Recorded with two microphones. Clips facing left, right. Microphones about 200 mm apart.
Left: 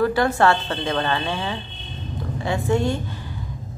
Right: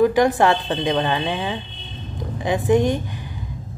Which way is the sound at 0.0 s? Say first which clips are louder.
Right 3 dB; 15° right (ahead or behind).